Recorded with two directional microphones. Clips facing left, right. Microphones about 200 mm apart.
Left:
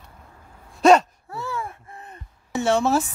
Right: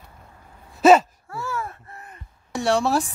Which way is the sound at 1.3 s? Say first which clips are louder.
Even; 20° left (ahead or behind).